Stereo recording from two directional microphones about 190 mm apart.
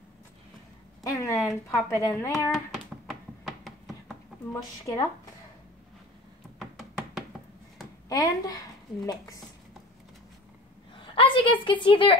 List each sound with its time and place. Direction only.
1.0 s speech: 15° left (ahead or behind)
2.5 s a sound: centre (ahead or behind)
4.5 s speech: 15° left (ahead or behind)
6.6 s music: centre (ahead or behind)
8.1 s a woman's voice: 20° left (ahead or behind)
11.0 s a woman's voice: 25° left (ahead or behind)